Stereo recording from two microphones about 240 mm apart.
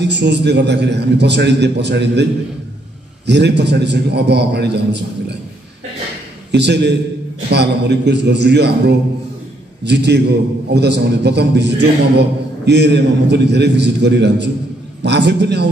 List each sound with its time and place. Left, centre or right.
0.0 s a man's voice: right
3.3 s a man's voice: right
6.5 s a man's voice: right